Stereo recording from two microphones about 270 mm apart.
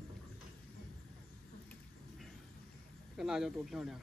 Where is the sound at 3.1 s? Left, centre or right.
Centre.